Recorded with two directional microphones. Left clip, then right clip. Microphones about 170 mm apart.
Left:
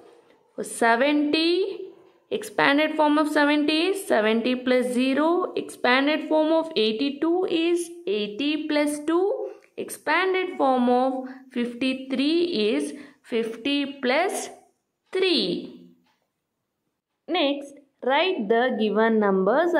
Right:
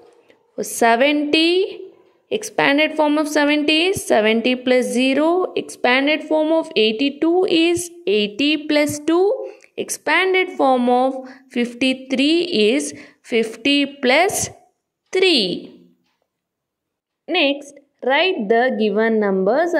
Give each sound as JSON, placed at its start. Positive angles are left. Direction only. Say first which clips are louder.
{"t": 0.6, "sound": "a woman's voice", "louder": "right 6 dB", "side_deg": -30}
{"t": 17.3, "sound": "a woman's voice", "louder": "right 6 dB", "side_deg": -35}